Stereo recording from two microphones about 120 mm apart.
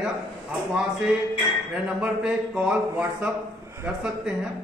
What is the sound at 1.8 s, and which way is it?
A man's voice, 10° right (ahead or behind).